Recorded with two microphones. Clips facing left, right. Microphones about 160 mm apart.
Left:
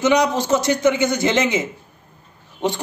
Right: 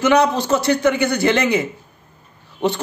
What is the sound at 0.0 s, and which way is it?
A man's voice, 15° left (ahead or behind).